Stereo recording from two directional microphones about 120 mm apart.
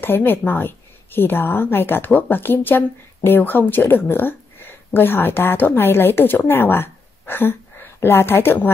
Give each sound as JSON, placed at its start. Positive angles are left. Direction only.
{"t": 0.0, "sound": "a woman's voice", "side_deg": 15}